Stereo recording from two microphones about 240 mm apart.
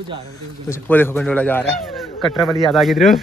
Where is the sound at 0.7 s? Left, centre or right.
Centre.